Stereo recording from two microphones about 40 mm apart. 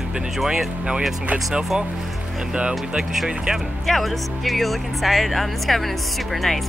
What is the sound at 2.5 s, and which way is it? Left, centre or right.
Speech, right.